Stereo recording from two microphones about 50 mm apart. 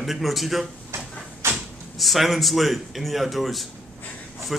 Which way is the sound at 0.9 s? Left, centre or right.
Right.